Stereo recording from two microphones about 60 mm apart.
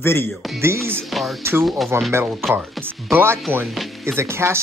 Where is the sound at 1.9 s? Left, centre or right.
Right.